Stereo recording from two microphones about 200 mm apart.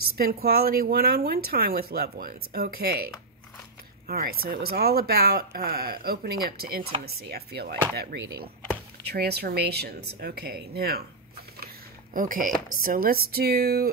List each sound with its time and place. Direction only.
0.2 s speech: 50° right (ahead or behind)
4.1 s speech: 50° right (ahead or behind)
11.6 s a sound: 45° right (ahead or behind)
12.8 s speech: 45° right (ahead or behind)